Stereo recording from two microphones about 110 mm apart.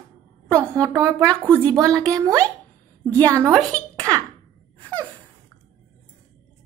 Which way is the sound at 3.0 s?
15° left (ahead or behind).